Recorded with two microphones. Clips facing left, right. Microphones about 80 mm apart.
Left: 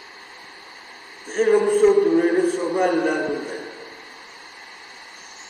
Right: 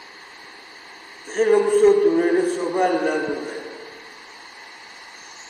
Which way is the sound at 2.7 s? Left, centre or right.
Centre.